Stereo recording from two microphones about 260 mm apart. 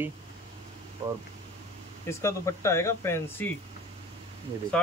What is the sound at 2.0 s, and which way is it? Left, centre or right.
Speech, centre.